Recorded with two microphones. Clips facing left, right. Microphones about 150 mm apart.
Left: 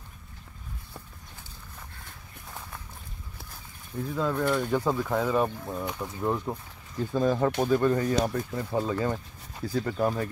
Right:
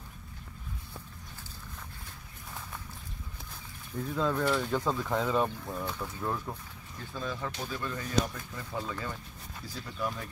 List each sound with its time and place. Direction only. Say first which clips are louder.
4.0 s speech: left 2 dB; 5° left (ahead or behind); by 6.6 s 25° left (ahead or behind)
7.1 s speech: left 12 dB; 50° left (ahead or behind)
9.8 s speech: left 10 dB; 55° left (ahead or behind)